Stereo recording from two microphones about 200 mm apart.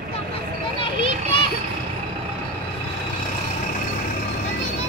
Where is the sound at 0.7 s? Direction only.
25° left (ahead or behind).